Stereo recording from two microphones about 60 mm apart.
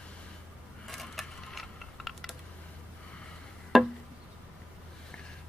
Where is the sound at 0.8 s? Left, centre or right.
Centre.